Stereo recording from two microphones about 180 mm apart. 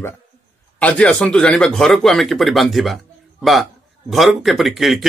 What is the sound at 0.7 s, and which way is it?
Speech, 5° left (ahead or behind).